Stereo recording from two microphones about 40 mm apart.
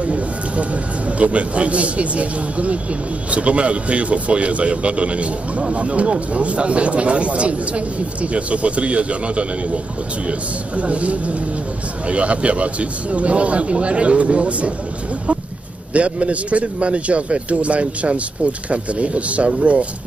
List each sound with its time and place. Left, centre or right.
0.0 s a sound: right
1.1 s a man's voice: right
10.8 s a man's voice: right
15.9 s a man's voice: right